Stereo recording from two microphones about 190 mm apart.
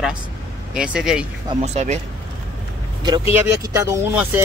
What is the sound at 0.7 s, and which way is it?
Speech, 5° right (ahead or behind).